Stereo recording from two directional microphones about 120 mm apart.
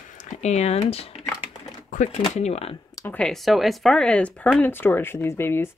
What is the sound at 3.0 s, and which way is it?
Speech, 15° left (ahead or behind).